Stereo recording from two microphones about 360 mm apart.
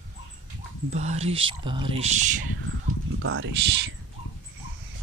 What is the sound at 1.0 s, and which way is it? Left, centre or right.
Speech, centre.